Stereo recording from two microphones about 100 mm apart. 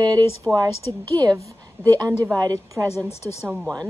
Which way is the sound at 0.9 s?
50° right (ahead or behind).